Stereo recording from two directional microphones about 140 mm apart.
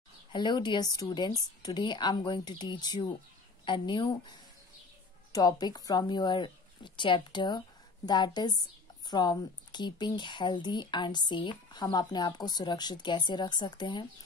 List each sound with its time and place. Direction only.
0.3 s speech: 30° left (ahead or behind)